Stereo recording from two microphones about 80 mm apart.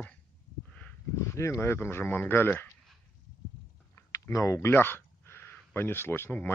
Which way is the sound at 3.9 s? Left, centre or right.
Left.